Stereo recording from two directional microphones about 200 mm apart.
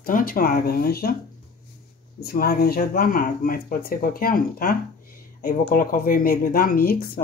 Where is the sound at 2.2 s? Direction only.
50° left (ahead or behind).